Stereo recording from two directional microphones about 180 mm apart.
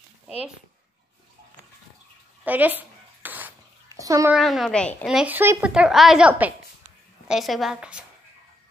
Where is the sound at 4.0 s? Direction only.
15° right (ahead or behind).